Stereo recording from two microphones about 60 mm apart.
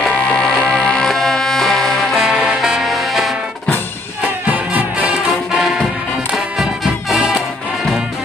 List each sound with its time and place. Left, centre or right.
0.0 s music: centre
2.1 s music: centre
4.5 s music: right
5.0 s music: centre